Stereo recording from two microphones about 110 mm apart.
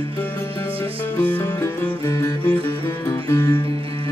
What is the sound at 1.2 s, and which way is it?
Music, 15° left (ahead or behind).